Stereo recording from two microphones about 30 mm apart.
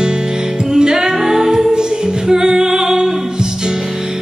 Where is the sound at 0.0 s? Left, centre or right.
Right.